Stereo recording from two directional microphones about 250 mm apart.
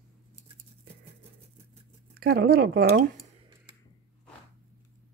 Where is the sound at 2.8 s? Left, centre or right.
Right.